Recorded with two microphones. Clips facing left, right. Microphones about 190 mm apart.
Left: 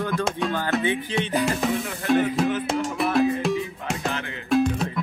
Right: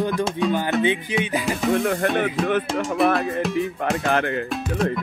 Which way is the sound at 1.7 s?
55° right (ahead or behind).